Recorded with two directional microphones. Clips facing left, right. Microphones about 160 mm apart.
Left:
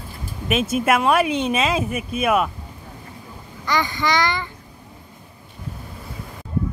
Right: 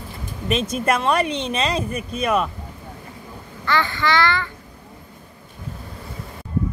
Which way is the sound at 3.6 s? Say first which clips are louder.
Right 1 dB; 15° left (ahead or behind).